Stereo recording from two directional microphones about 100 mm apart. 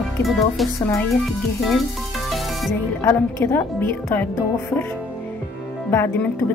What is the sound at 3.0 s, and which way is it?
Speech, 25° left (ahead or behind).